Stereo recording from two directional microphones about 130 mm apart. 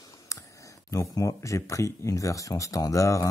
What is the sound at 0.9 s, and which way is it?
Speech, 25° left (ahead or behind).